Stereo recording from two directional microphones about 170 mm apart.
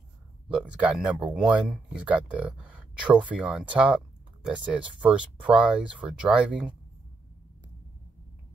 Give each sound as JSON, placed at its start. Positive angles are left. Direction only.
{"t": 0.5, "sound": "speech", "side_deg": -5}